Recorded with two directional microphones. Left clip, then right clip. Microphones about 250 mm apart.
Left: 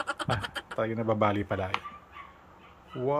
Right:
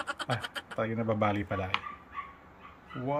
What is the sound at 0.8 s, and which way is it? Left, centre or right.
Speech, centre.